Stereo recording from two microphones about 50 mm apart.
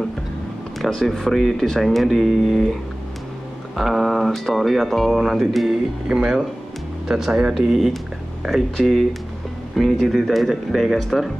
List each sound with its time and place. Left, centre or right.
0.7 s speech: centre
3.7 s speech: centre
6.0 s speech: centre